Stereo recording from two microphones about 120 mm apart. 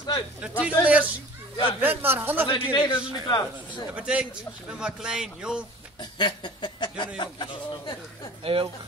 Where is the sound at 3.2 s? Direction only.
35° left (ahead or behind).